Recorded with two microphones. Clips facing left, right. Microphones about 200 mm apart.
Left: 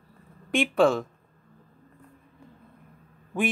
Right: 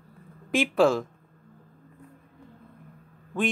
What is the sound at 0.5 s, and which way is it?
Speech, centre (ahead or behind).